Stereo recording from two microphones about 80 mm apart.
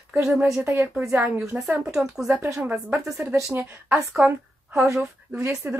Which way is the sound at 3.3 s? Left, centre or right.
Right.